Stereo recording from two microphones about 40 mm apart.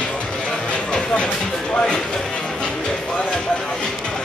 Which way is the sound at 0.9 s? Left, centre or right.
Left.